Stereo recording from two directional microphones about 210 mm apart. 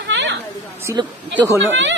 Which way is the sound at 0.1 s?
60° right (ahead or behind).